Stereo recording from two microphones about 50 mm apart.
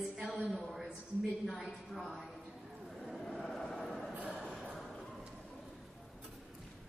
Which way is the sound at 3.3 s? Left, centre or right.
Centre.